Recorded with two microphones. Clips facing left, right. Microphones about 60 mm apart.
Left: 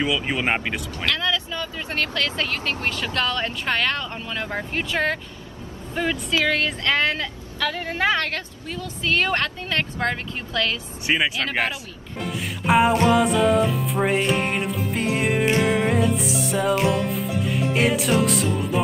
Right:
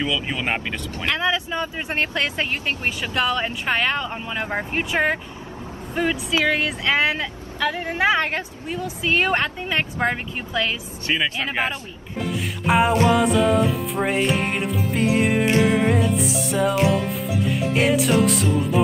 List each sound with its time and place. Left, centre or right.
0.0 s speech: centre
1.0 s speech: right
11.1 s speech: centre
12.2 s music: centre